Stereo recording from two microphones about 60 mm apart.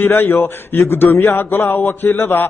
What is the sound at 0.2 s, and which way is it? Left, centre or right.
A man's voice, left.